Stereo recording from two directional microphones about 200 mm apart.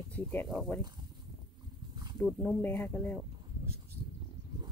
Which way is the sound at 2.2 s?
5° left (ahead or behind).